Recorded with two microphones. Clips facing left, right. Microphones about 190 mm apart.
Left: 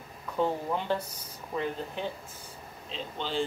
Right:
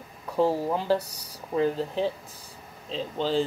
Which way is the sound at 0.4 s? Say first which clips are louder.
Right 5 dB; 35° right (ahead or behind).